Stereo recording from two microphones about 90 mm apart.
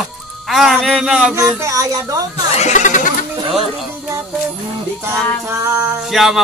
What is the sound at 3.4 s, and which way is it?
Speech, 85° right.